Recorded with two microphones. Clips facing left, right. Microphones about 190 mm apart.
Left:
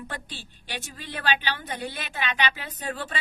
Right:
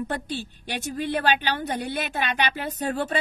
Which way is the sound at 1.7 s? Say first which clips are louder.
Right 6 dB; 45° right (ahead or behind).